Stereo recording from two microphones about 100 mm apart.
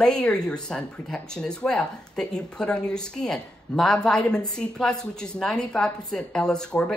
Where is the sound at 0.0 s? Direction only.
5° left (ahead or behind).